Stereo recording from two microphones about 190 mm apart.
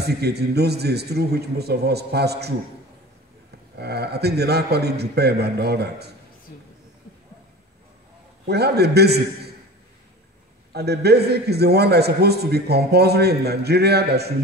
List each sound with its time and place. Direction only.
0.0 s a man's voice: 60° right (ahead or behind)
3.7 s a man's voice: 60° right (ahead or behind)
8.5 s a man's voice: 60° right (ahead or behind)
10.7 s a man's voice: 60° right (ahead or behind)